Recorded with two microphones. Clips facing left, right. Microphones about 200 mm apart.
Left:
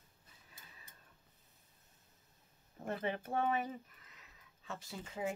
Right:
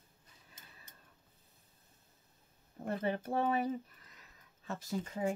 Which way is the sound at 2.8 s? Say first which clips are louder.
Right 3 dB; 35° right (ahead or behind).